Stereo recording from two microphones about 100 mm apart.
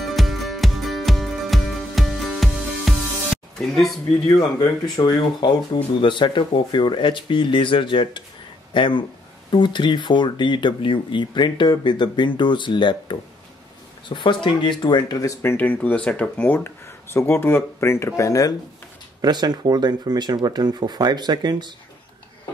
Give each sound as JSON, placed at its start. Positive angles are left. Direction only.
{"t": 0.0, "sound": "music", "side_deg": 0}
{"t": 4.4, "sound": "speech", "side_deg": 40}
{"t": 15.4, "sound": "speech", "side_deg": 15}
{"t": 19.2, "sound": "speech", "side_deg": -45}